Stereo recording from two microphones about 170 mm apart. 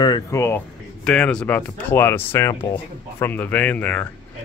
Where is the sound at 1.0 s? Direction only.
5° left (ahead or behind).